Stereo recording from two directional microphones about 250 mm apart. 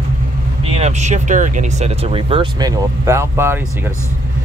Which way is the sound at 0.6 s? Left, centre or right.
Right.